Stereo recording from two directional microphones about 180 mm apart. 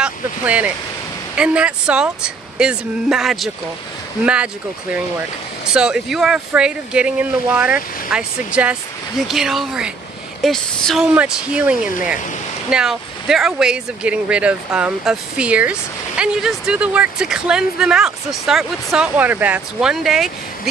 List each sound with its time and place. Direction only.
0.0 s a sound: 5° right (ahead or behind)
1.3 s speech: 5° right (ahead or behind)
5.8 s speech: 5° right (ahead or behind)